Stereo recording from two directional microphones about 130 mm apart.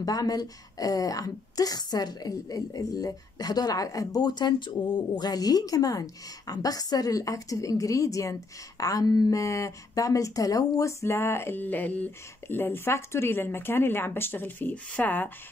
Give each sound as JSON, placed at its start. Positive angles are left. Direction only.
{"t": 0.0, "sound": "a woman's voice", "side_deg": 30}